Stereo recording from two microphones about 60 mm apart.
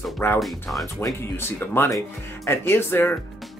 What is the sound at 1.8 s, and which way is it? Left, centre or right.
Speech, left.